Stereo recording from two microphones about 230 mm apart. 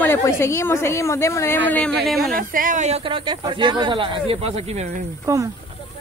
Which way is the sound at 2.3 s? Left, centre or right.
Right.